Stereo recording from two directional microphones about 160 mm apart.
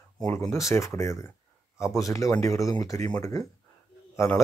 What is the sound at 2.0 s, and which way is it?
Speech, 20° left (ahead or behind).